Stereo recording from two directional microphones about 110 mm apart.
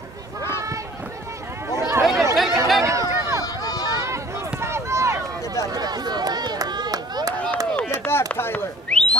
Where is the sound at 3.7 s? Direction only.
35° left (ahead or behind).